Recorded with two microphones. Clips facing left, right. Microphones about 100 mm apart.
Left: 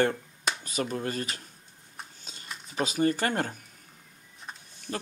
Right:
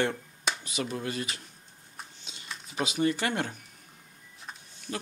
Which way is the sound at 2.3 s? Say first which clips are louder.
Left 1 dB; 45° left (ahead or behind).